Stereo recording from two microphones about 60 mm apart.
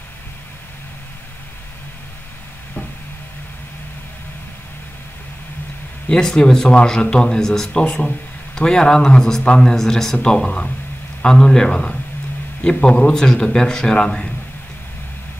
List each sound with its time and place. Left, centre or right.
6.0 s speech: centre
7.8 s a man's voice: centre